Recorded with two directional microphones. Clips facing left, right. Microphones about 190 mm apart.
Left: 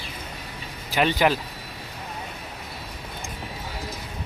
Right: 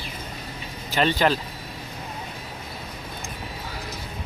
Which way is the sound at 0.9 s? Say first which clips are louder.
Even; 10° left (ahead or behind).